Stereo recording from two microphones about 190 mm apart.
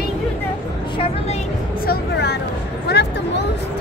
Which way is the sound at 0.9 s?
30° left (ahead or behind).